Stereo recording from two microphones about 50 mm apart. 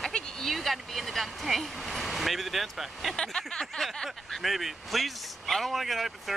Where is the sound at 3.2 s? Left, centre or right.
Centre.